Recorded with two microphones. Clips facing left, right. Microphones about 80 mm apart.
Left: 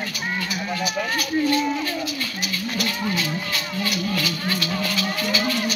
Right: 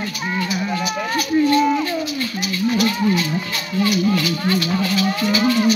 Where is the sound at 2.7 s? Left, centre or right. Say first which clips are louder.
Right 7 dB; right.